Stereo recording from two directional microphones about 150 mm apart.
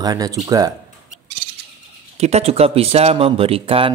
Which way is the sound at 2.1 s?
45° right (ahead or behind).